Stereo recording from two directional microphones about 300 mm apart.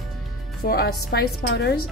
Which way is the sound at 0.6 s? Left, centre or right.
Left.